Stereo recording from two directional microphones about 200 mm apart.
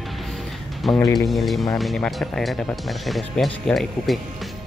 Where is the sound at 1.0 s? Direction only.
20° left (ahead or behind).